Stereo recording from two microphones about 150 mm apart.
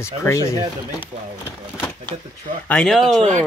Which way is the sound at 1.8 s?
10° left (ahead or behind).